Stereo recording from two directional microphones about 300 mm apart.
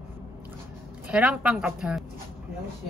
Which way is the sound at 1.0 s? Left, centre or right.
Centre.